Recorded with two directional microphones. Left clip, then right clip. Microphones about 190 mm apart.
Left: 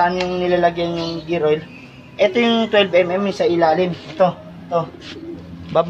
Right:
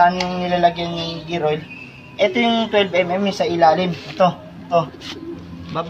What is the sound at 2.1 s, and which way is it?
A woman's voice, 25° left (ahead or behind).